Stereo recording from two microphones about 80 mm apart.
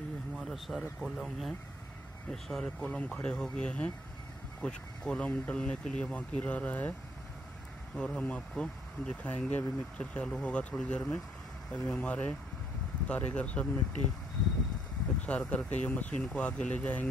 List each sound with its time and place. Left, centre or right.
0.4 s speech: centre
7.9 s speech: centre
15.2 s speech: centre